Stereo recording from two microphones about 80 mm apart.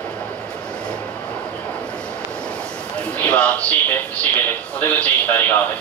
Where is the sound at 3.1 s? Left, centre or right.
Centre.